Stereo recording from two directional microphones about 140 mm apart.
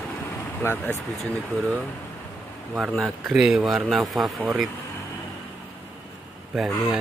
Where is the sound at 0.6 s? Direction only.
10° left (ahead or behind).